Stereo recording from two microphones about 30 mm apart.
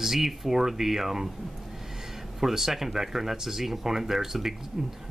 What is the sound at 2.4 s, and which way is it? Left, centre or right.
Speech, centre.